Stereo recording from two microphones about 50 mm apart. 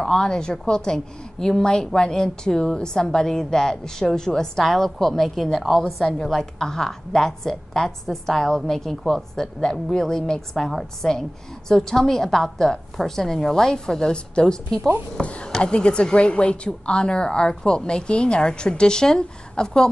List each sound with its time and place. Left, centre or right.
0.0 s a woman's voice: centre